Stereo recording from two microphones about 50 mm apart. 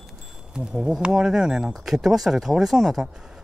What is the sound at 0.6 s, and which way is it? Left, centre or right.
Speech, centre.